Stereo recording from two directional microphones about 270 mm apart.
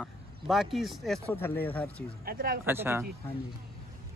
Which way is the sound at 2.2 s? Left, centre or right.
Right.